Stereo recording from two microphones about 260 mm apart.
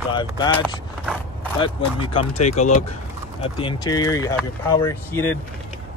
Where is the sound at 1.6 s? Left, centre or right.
Centre.